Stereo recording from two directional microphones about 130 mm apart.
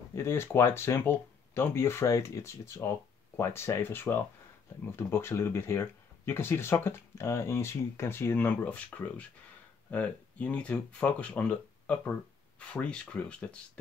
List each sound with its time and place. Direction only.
0.1 s speech: 20° left (ahead or behind)